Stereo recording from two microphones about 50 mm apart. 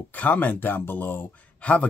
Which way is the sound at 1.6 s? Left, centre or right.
Left.